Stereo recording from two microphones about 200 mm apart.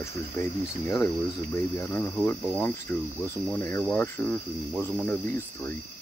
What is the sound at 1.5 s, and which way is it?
Speech, 10° left (ahead or behind).